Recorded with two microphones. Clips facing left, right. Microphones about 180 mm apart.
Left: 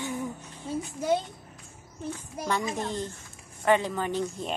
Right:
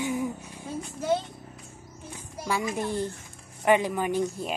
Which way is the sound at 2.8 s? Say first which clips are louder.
Right 3 dB; 10° right (ahead or behind).